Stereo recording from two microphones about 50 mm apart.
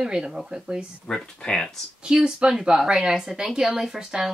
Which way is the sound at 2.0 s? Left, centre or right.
Centre.